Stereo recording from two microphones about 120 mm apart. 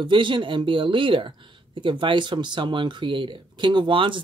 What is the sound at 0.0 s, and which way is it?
Speech, 40° right (ahead or behind).